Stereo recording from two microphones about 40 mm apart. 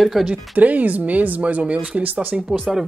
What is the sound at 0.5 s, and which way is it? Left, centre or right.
Speech, right.